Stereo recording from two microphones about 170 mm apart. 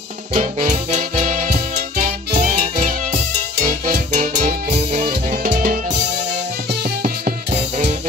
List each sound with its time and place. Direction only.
0.3 s music: 45° right (ahead or behind)
6.7 s music: 65° right (ahead or behind)
7.5 s music: 40° right (ahead or behind)